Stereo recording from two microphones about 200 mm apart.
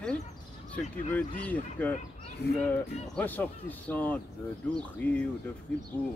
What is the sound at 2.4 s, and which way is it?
Speech, 55° left (ahead or behind).